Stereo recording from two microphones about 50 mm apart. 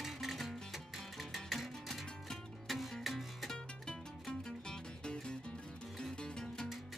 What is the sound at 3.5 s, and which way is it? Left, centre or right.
Music, centre.